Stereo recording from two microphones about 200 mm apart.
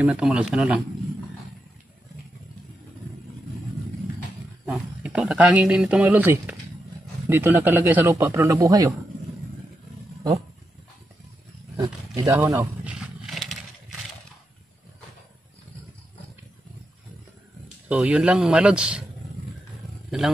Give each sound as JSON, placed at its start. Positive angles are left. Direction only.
{"t": 0.0, "sound": "speech", "side_deg": -5}
{"t": 4.6, "sound": "a man's voice", "side_deg": -5}
{"t": 12.2, "sound": "a man's voice", "side_deg": -15}
{"t": 12.4, "sound": "a sound", "side_deg": -5}
{"t": 17.8, "sound": "speech", "side_deg": -5}